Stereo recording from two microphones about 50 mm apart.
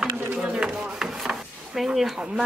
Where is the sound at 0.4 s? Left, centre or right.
Centre.